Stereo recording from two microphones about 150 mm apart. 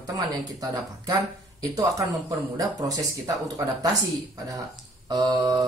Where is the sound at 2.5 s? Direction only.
25° right (ahead or behind).